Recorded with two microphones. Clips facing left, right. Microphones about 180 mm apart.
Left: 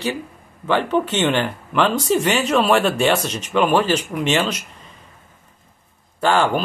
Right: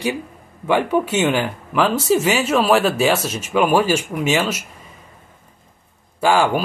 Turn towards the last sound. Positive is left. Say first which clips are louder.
# right 1 dB
turn(degrees=-10)  # may be behind; listen again after turning